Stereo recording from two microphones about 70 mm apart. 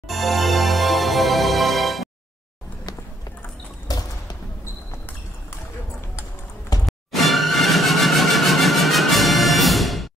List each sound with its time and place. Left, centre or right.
0.1 s music: centre
3.8 s basketball bounce: left
6.9 s music: centre